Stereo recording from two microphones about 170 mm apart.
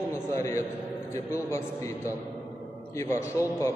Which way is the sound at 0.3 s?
15° left (ahead or behind).